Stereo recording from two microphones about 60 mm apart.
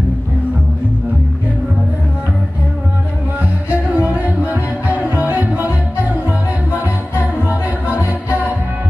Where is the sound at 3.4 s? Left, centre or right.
Right.